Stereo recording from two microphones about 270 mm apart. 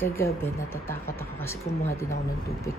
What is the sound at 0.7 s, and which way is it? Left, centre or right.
Speech, centre.